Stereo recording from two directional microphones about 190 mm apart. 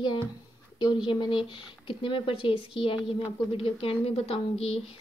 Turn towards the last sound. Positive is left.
turn(degrees=30)  # may be behind; listen again after turning